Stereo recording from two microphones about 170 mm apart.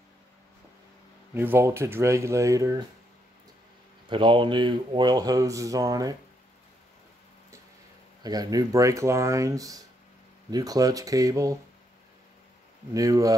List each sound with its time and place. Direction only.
1.3 s speech: 15° right (ahead or behind)
4.1 s speech: 30° right (ahead or behind)
8.2 s speech: 25° right (ahead or behind)
12.9 s speech: 20° right (ahead or behind)